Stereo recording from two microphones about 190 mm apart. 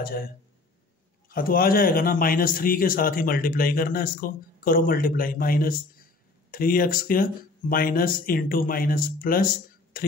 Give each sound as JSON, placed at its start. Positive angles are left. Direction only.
{"t": 0.0, "sound": "a man's voice", "side_deg": 50}
{"t": 1.3, "sound": "a man's voice", "side_deg": 50}